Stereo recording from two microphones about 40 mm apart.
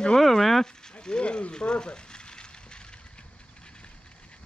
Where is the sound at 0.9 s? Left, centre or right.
Left.